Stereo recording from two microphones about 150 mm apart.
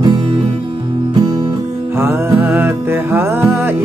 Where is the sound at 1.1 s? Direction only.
25° right (ahead or behind).